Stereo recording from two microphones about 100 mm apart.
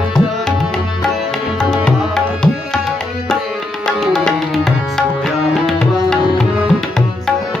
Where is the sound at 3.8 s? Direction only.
5° left (ahead or behind).